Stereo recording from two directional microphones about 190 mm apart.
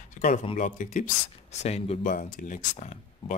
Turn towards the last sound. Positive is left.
turn(degrees=40)  # may be behind; listen again after turning